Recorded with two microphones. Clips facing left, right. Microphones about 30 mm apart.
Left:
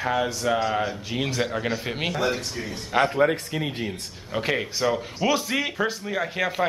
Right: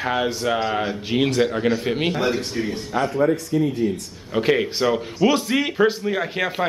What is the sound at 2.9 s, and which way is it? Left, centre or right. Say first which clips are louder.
Speech: left 1 dB; left.